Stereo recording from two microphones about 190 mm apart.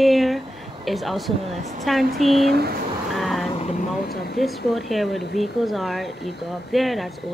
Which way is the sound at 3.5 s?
35° left (ahead or behind).